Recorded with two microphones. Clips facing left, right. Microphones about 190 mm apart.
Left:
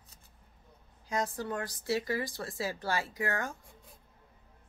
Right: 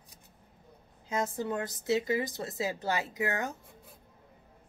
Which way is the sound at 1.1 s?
20° right (ahead or behind).